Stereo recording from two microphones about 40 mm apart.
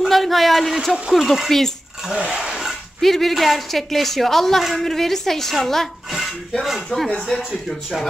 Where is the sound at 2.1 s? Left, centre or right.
Centre.